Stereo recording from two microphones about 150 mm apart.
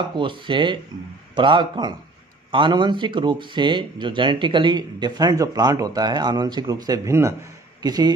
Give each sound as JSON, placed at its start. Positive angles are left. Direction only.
{"t": 0.1, "sound": "speech", "side_deg": -35}